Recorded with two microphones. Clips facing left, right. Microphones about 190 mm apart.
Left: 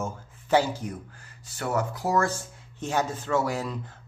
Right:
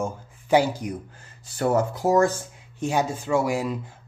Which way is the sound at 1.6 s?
30° right (ahead or behind).